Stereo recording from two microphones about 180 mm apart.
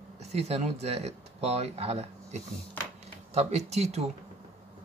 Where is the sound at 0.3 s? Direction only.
35° right (ahead or behind).